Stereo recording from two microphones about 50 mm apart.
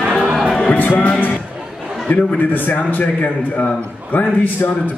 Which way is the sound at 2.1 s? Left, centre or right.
Left.